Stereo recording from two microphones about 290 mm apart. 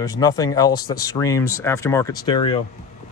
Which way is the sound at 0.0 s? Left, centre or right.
Centre.